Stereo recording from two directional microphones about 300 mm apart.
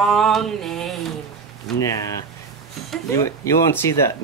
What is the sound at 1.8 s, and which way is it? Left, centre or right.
Speech, centre.